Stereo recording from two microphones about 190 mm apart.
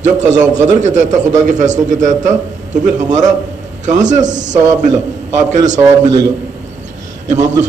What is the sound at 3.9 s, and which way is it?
A man's voice, 40° right (ahead or behind).